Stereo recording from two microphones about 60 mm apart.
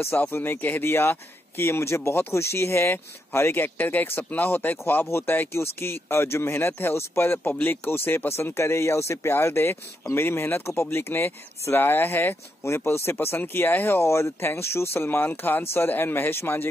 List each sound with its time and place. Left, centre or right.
0.3 s speech: left
5.0 s speech: left